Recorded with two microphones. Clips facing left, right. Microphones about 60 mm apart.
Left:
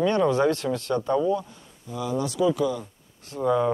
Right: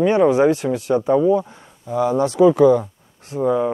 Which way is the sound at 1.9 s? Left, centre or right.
Right.